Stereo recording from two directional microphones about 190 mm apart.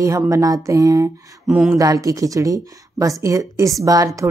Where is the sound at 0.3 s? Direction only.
20° right (ahead or behind).